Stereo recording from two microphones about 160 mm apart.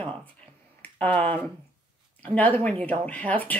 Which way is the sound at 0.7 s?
10° left (ahead or behind).